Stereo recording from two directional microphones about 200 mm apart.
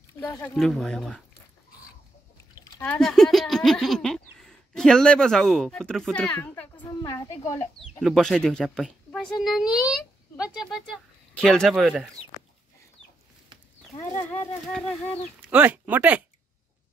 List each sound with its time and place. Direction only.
0.2 s speech: 10° left (ahead or behind)
0.6 s speech: centre (ahead or behind)
2.8 s speech: 5° left (ahead or behind)
7.3 s speech: 30° left (ahead or behind)
8.0 s speech: centre (ahead or behind)
13.9 s speech: 10° left (ahead or behind)
15.5 s speech: 10° right (ahead or behind)